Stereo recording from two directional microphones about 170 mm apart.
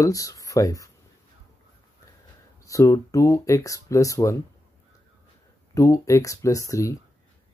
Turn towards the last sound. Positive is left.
turn(degrees=20)  # may be behind; listen again after turning